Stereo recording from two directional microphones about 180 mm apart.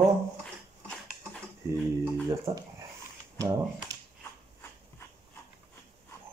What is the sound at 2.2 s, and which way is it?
Speech, 20° right (ahead or behind).